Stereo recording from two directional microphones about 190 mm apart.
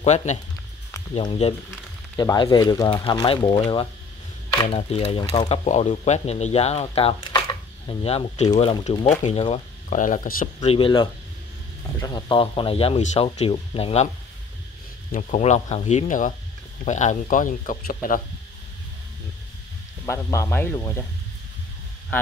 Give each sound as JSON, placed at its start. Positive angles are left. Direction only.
{"t": 0.0, "sound": "speech", "side_deg": 35}
{"t": 15.0, "sound": "speech", "side_deg": 40}
{"t": 20.1, "sound": "speech", "side_deg": 15}